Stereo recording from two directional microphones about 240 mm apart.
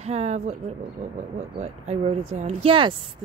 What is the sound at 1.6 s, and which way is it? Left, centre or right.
Speech, right.